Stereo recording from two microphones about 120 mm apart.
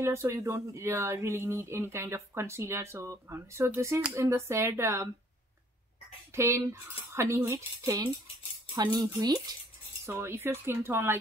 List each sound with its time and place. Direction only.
0.0 s speech: 20° right (ahead or behind)
6.3 s speech: 20° right (ahead or behind)
10.0 s speech: 20° right (ahead or behind)